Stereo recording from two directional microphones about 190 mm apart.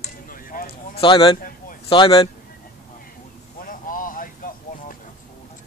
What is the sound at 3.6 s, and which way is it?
Vehicle, 45° left (ahead or behind).